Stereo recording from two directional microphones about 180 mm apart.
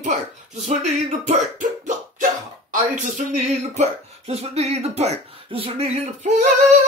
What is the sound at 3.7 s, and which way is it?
Speech, 35° right (ahead or behind).